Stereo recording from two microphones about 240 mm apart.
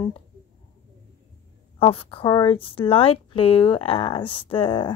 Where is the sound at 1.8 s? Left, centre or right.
Left.